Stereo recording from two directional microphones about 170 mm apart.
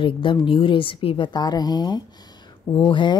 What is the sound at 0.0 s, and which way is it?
Speech, 30° left (ahead or behind).